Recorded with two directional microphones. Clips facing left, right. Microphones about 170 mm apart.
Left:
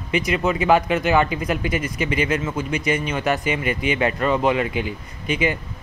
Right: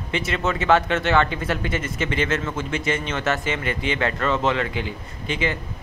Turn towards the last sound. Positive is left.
turn(degrees=15)  # may be behind; listen again after turning